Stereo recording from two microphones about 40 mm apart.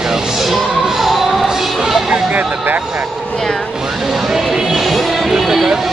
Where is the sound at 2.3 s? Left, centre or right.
Right.